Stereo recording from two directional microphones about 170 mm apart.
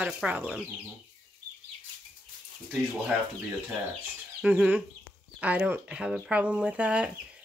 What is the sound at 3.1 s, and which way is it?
Speech, 5° right (ahead or behind).